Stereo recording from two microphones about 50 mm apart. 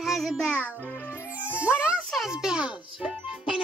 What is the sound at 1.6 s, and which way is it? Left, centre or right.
A child's voice, right.